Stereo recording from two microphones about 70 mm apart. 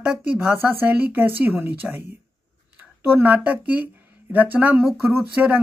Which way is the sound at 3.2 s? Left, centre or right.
Right.